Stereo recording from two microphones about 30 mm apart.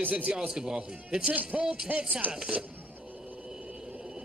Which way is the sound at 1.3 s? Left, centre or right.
Right.